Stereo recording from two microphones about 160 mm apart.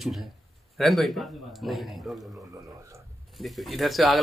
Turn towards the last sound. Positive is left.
turn(degrees=0)  # may be behind; listen again after turning